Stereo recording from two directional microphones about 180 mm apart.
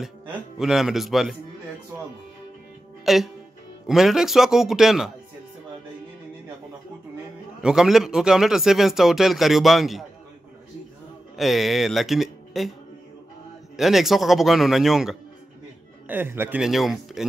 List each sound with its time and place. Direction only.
0.6 s speech: centre (ahead or behind)
3.1 s speech: centre (ahead or behind)
7.6 s speech: 5° right (ahead or behind)
11.3 s speech: centre (ahead or behind)
13.7 s speech: centre (ahead or behind)